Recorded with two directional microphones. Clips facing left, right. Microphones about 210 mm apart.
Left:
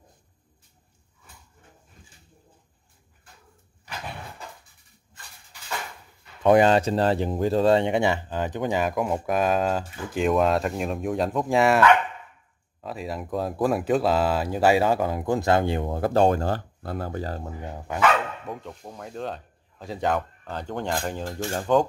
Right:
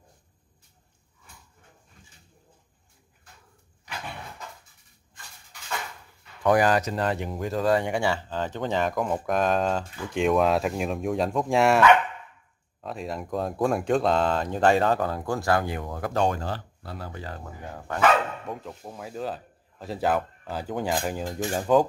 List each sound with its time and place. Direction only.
6.4 s speech: 25° left (ahead or behind); by 11.8 s centre (ahead or behind)
12.8 s speech: centre (ahead or behind); by 17.5 s 40° left (ahead or behind)
17.6 s speech: 15° left (ahead or behind)
18.5 s speech: 5° right (ahead or behind)
21.5 s speech: 5° right (ahead or behind)